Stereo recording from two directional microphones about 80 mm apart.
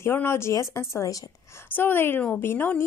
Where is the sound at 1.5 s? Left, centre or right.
Left.